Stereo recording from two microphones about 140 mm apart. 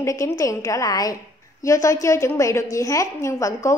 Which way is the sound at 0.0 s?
20° left (ahead or behind).